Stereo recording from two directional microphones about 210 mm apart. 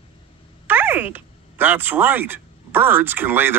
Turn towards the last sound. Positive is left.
turn(degrees=-10)  # may be behind; listen again after turning